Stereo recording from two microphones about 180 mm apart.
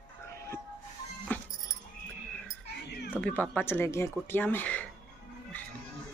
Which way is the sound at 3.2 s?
10° left (ahead or behind).